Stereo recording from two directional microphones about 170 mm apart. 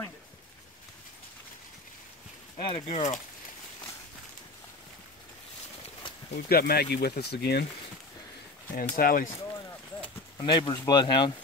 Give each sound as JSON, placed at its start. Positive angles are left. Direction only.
{"t": 2.6, "sound": "speech", "side_deg": 35}
{"t": 6.3, "sound": "speech", "side_deg": 70}
{"t": 8.7, "sound": "speech", "side_deg": 60}
{"t": 10.3, "sound": "speech", "side_deg": 25}